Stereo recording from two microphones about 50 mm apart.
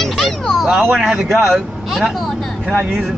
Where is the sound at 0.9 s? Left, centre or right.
Centre.